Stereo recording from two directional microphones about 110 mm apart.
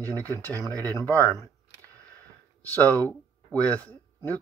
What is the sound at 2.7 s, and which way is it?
Speech, 15° left (ahead or behind).